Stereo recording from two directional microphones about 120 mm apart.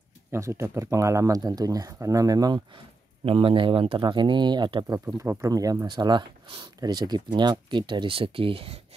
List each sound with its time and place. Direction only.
0.3 s speech: 25° right (ahead or behind)
3.3 s speech: 50° right (ahead or behind)
4.8 s speech: 30° right (ahead or behind); by 8.8 s 55° right (ahead or behind)